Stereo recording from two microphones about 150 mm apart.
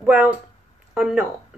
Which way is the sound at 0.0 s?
5° right (ahead or behind).